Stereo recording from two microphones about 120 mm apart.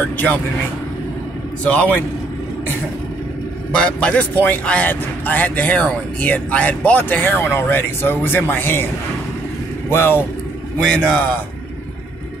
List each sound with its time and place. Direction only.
1.6 s speech: 10° left (ahead or behind)
3.7 s speech: 10° left (ahead or behind)
9.8 s speech: 20° left (ahead or behind)
10.8 s speech: 5° left (ahead or behind)